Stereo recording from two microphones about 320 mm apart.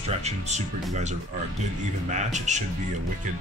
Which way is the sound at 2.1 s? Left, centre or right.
Right.